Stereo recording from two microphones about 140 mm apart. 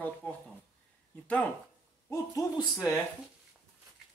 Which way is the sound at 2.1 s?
25° left (ahead or behind).